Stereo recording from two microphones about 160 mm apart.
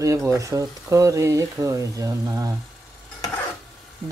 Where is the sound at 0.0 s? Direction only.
20° right (ahead or behind).